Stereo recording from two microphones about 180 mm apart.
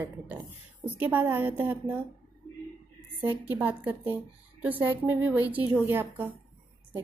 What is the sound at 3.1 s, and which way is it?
Speech, 10° right (ahead or behind).